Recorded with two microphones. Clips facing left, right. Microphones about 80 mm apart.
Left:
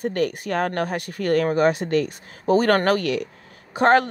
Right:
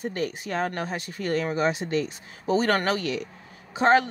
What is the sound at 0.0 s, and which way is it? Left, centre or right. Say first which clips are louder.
Speech: left 6 dB; left.